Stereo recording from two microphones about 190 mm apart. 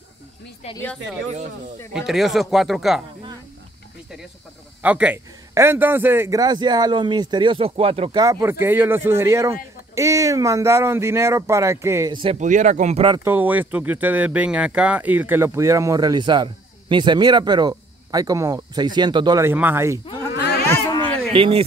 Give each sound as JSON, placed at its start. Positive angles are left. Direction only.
{"t": 2.0, "sound": "speech", "side_deg": 0}
{"t": 4.8, "sound": "a man's voice", "side_deg": -5}
{"t": 12.4, "sound": "speech", "side_deg": -40}
{"t": 13.2, "sound": "a man's voice", "side_deg": -10}
{"t": 20.6, "sound": "a sound", "side_deg": 10}
{"t": 21.3, "sound": "speech", "side_deg": -30}